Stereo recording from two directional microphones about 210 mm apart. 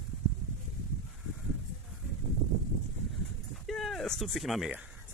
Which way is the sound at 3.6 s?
Centre (ahead or behind).